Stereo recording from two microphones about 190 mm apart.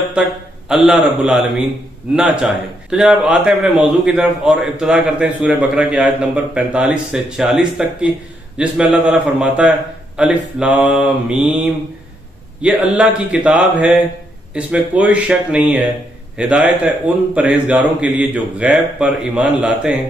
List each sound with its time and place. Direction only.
0.7 s a man's voice: 5° right (ahead or behind)